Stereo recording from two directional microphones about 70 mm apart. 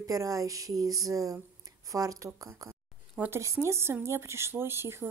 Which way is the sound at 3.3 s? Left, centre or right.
Right.